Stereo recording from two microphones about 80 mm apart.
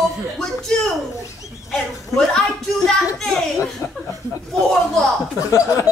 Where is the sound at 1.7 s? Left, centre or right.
Centre.